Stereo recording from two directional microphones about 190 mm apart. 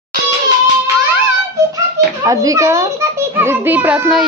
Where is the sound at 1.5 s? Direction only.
15° right (ahead or behind).